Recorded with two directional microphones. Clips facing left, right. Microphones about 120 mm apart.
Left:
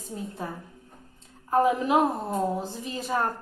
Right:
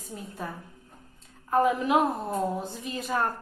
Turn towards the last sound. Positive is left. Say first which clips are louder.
# left 1 dB
turn(degrees=30)  # may be behind; listen again after turning